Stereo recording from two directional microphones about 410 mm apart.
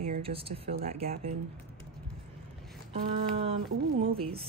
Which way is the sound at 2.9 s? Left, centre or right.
Centre.